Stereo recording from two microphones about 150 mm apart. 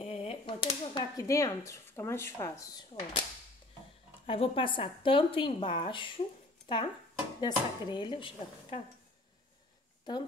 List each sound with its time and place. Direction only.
0.0 s a sound: 40° left (ahead or behind)
1.1 s speech: 20° left (ahead or behind)
4.3 s a woman's voice: 35° left (ahead or behind)
10.1 s a woman's voice: 30° left (ahead or behind)